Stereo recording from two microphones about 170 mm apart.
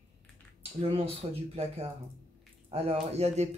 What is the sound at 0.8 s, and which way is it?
Speech, 35° right (ahead or behind).